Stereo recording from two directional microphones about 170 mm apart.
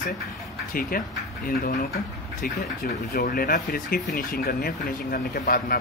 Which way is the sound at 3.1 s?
60° left (ahead or behind).